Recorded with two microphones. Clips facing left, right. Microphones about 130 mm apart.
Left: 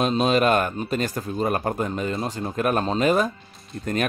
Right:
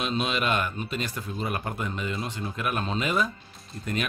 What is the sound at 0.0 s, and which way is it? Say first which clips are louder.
Speech: left 8 dB; 40° left (ahead or behind).